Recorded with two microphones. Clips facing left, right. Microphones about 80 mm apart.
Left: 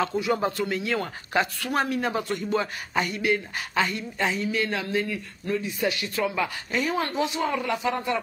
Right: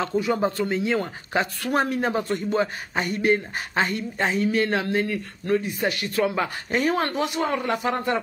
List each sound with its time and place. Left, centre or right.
0.3 s speech: right
1.6 s speech: right
3.1 s speech: right
6.3 s speech: right
6.8 s speech: right